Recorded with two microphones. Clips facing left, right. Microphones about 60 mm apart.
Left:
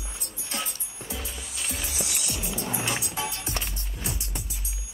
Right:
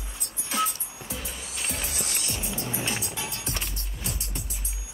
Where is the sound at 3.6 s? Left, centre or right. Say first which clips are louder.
Left 1 dB; centre.